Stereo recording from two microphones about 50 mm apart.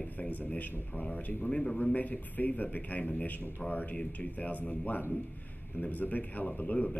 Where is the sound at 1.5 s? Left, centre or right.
Centre.